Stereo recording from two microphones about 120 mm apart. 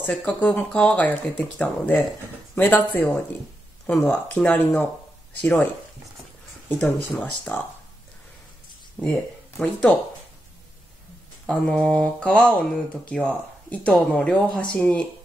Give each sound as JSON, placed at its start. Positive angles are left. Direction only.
{"t": 0.1, "sound": "speech", "side_deg": 10}
{"t": 6.7, "sound": "speech", "side_deg": 10}
{"t": 9.0, "sound": "speech", "side_deg": 10}
{"t": 11.4, "sound": "speech", "side_deg": 5}